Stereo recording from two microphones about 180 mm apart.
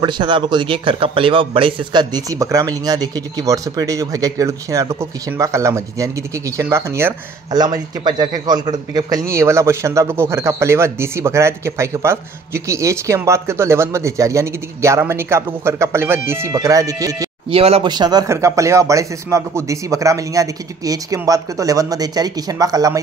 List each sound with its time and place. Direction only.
0.0 s a man's voice: 25° right (ahead or behind)
17.5 s speech: 35° right (ahead or behind)